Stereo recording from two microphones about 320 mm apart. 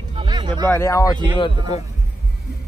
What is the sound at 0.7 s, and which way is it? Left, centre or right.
Speech, centre.